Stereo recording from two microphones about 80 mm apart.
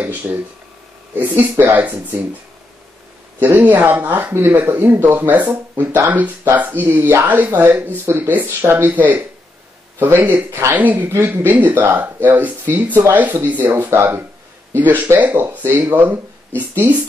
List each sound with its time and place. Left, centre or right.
0.0 s speech: right
3.3 s speech: right